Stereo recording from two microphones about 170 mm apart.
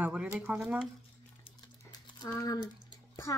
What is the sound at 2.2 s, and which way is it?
Speech, 25° left (ahead or behind).